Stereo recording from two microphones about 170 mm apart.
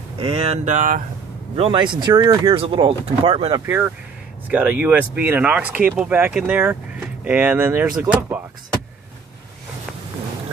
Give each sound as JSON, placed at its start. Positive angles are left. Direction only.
{"t": 0.2, "sound": "speech", "side_deg": -35}
{"t": 1.6, "sound": "speech", "side_deg": -30}
{"t": 3.6, "sound": "speech", "side_deg": -15}